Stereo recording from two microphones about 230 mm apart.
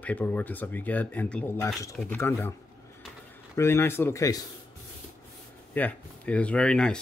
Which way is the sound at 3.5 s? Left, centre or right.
Centre.